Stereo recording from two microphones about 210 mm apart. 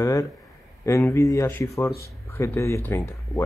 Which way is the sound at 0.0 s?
15° left (ahead or behind).